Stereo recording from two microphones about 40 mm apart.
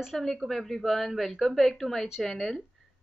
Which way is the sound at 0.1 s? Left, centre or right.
Centre.